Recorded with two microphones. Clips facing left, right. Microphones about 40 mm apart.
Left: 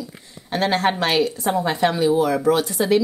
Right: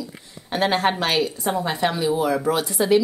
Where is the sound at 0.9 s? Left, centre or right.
Centre.